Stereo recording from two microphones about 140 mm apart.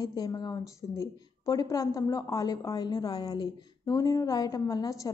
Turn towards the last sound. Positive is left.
turn(degrees=25)  # may be behind; listen again after turning